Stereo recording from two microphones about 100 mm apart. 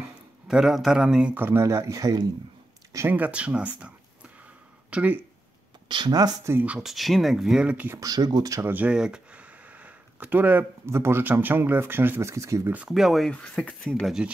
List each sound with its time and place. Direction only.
0.5 s speech: 5° right (ahead or behind)
1.4 s speech: 25° right (ahead or behind)
3.1 s speech: 15° right (ahead or behind)
4.9 s speech: 15° right (ahead or behind)
5.9 s speech: 50° right (ahead or behind)
6.6 s speech: 10° right (ahead or behind)
8.0 s speech: 40° right (ahead or behind)
8.6 s speech: 15° right (ahead or behind); by 12.7 s 30° right (ahead or behind)
12.7 s speech: 5° right (ahead or behind)